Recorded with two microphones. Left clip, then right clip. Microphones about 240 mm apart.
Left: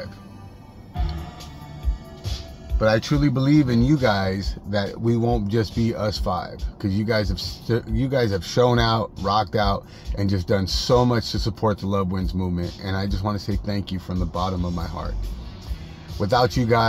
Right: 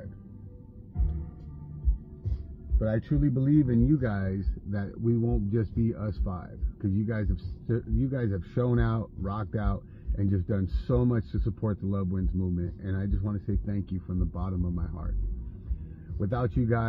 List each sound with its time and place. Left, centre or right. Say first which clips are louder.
2.8 s speech: left 10 dB; left
16.2 s speech: left 12 dB; left